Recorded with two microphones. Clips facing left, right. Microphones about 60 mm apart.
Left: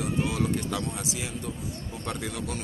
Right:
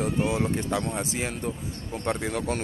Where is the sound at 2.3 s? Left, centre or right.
Right.